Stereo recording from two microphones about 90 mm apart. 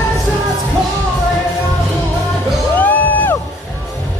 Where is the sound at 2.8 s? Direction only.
20° left (ahead or behind).